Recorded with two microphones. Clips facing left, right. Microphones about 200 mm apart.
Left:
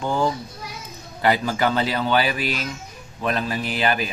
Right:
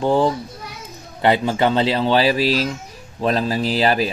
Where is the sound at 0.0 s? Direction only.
30° right (ahead or behind).